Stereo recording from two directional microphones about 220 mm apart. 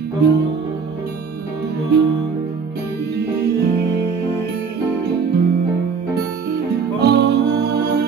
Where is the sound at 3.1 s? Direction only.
50° right (ahead or behind).